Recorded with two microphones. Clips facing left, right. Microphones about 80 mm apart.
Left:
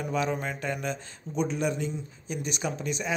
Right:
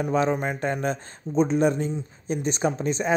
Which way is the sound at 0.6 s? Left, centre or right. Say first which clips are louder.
Right 6 dB; right.